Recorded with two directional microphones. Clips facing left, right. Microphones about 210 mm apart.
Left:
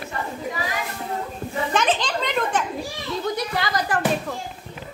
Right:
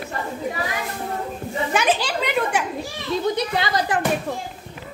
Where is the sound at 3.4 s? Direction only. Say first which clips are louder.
Right 2 dB; 25° right (ahead or behind).